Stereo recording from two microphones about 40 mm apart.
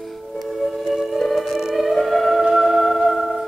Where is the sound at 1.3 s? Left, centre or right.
Centre.